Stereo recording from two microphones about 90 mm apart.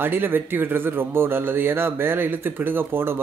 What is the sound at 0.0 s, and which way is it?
Speech, 25° right (ahead or behind).